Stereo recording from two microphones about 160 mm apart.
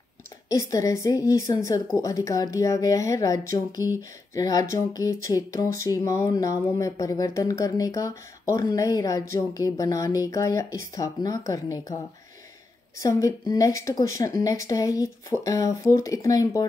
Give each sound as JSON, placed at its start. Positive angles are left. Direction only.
{"t": 0.5, "sound": "speech", "side_deg": 20}
{"t": 13.0, "sound": "speech", "side_deg": 20}